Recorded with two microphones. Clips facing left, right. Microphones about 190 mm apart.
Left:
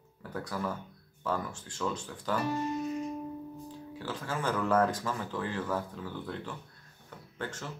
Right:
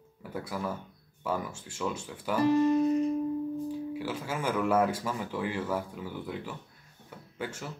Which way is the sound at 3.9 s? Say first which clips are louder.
Right 3 dB; 10° right (ahead or behind).